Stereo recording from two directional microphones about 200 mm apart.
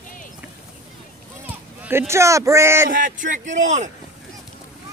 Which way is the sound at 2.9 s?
45° right (ahead or behind).